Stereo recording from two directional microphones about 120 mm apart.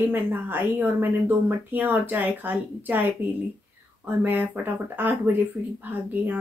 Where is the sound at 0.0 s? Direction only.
15° right (ahead or behind).